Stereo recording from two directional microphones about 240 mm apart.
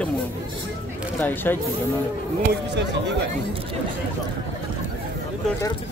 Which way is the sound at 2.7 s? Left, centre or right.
Right.